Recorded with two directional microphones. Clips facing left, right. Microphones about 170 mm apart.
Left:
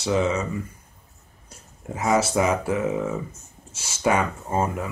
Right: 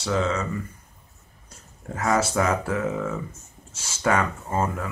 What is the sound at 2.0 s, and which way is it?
Speech, 15° left (ahead or behind).